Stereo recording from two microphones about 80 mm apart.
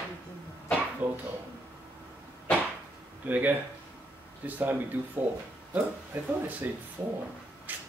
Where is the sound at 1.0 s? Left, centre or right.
Centre.